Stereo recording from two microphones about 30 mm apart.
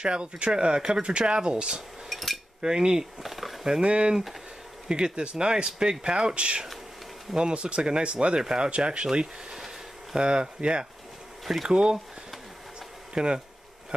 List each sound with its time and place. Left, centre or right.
0.0 s speech: right
2.0 s dishes: centre
2.6 s speech: right
3.2 s a sound: centre
3.8 s speech: right
8.4 s speech: right
8.6 s speech: right
13.1 s speech: right